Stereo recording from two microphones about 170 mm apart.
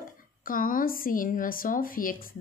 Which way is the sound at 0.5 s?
55° left (ahead or behind).